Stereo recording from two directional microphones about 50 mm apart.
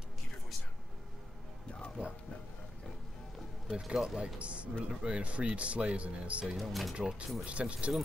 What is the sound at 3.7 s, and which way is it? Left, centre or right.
Speech, centre.